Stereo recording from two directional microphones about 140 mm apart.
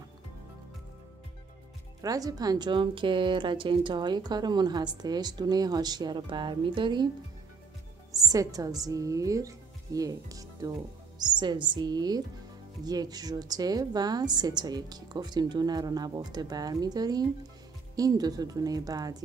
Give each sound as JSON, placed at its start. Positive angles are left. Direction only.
{"t": 2.0, "sound": "speech", "side_deg": -25}
{"t": 8.3, "sound": "a woman's voice", "side_deg": -25}